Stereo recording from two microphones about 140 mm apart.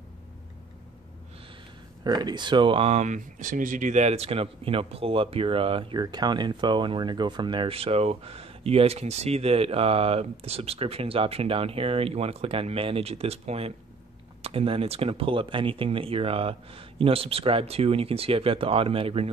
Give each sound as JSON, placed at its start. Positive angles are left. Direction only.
{"t": 2.0, "sound": "speech", "side_deg": -30}